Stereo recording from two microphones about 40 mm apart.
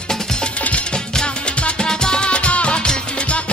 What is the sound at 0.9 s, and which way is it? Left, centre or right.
Music, left.